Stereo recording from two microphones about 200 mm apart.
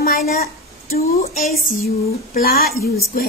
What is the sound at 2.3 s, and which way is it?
Speech, 50° left (ahead or behind).